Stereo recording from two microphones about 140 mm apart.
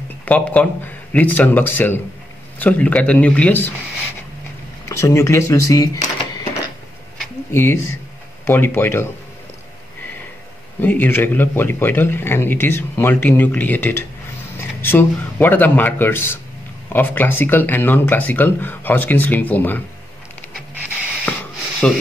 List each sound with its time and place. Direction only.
0.2 s speech: 10° left (ahead or behind)
4.8 s speech: 20° left (ahead or behind)
7.5 s speech: 20° left (ahead or behind)
10.8 s a man's voice: 15° left (ahead or behind)
21.3 s a sound: 5° left (ahead or behind)